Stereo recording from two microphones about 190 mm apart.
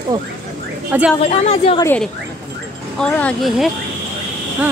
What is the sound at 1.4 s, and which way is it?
Speech, 35° left (ahead or behind).